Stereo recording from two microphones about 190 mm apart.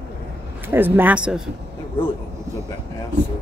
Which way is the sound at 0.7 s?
10° right (ahead or behind).